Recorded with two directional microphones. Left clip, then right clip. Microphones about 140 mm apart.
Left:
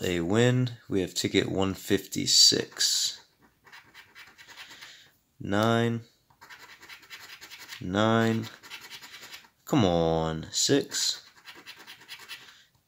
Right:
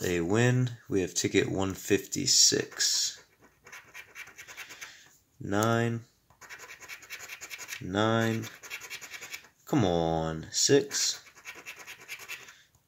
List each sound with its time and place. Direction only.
0.0 s speech: 20° left (ahead or behind)
5.5 s speech: 25° left (ahead or behind)
7.9 s speech: 30° left (ahead or behind)
9.7 s speech: 30° left (ahead or behind)